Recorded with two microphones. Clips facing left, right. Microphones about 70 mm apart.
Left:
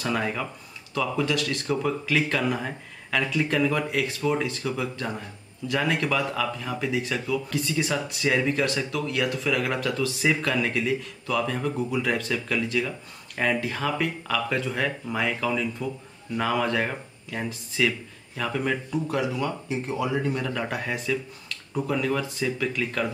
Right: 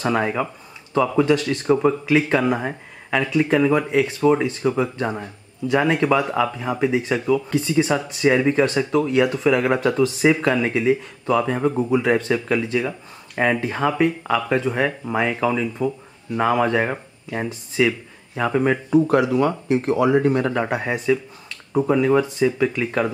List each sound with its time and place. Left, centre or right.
0.0 s speech: right
18.9 s speech: right
20.6 s speech: right